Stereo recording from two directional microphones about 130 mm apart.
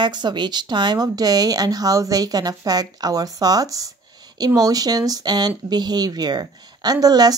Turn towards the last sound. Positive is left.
turn(degrees=-30)  # may be behind; listen again after turning